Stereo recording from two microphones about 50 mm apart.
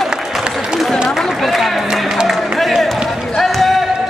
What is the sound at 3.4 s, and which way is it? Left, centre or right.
Run, centre.